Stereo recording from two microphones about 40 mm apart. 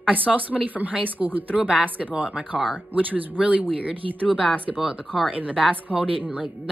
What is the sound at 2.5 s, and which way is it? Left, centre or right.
Speech, centre.